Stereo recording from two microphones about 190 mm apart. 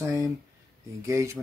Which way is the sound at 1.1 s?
15° right (ahead or behind).